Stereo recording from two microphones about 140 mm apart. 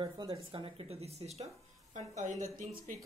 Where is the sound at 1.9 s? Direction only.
65° right (ahead or behind).